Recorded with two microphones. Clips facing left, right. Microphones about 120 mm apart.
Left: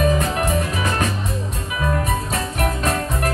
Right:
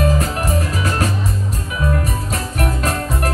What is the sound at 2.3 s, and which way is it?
Music, 35° right (ahead or behind).